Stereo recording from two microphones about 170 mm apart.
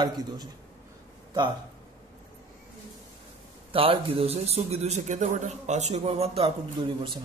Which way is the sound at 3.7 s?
30° right (ahead or behind).